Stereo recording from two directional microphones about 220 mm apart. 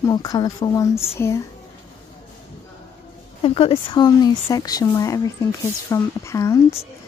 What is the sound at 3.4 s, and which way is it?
Speech, 25° left (ahead or behind).